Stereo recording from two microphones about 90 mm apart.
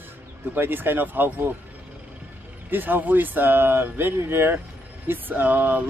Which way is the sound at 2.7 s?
20° right (ahead or behind).